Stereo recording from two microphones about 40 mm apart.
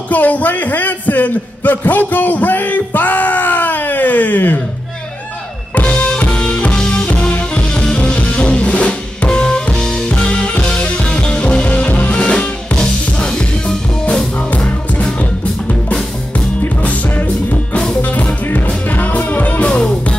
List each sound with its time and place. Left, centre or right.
0.1 s a man's voice: left
6.1 s music: left
6.7 s music: centre; by 8.8 s left
9.3 s drum kit: centre
9.8 s music: centre
10.0 s music: left
11.7 s music: left; by 13.7 s centre
16.8 s music: left
19.6 s music: left